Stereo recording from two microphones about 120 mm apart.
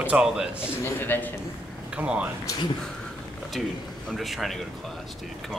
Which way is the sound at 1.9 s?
10° right (ahead or behind).